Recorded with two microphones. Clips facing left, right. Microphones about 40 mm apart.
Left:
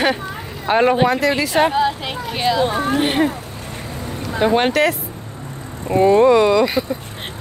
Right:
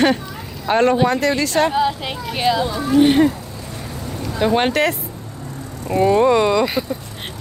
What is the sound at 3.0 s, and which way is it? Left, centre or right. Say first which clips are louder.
Speech: right 7 dB; left.